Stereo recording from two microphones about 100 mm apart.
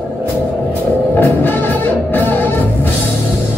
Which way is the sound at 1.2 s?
20° left (ahead or behind).